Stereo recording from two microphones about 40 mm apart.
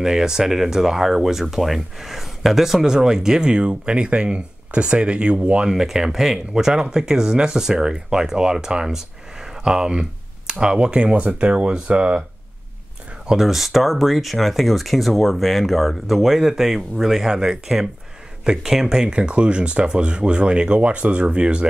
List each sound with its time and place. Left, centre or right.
0.0 s speech: centre; by 5.7 s right
5.9 s speech: centre
11.1 s speech: right
13.3 s speech: centre; by 21.6 s right